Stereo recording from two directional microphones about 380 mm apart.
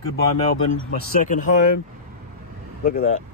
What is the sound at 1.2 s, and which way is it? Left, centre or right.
Speech, centre.